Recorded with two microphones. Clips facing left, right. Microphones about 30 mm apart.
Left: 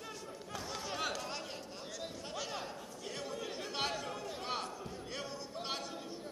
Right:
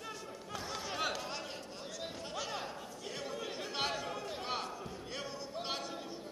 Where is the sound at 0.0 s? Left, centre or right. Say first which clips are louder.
Right 1 dB; centre.